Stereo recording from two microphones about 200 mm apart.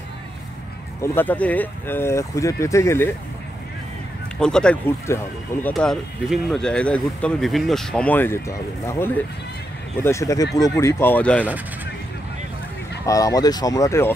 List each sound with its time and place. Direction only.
1.0 s speech: 10° left (ahead or behind)
4.4 s speech: 5° left (ahead or behind)
5.7 s speech: centre (ahead or behind)
13.0 s speech: 15° left (ahead or behind)